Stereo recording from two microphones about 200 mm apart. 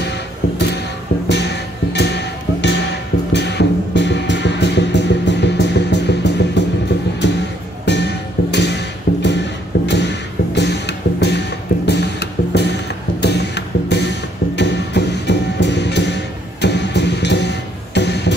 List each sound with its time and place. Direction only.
1.3 s music: 60° left (ahead or behind)
7.8 s music: 60° left (ahead or behind)
9.8 s a sound: 60° left (ahead or behind)
16.6 s music: 60° left (ahead or behind)